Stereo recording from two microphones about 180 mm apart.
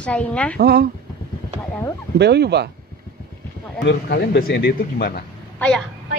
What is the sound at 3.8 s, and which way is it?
Speech, 65° left (ahead or behind).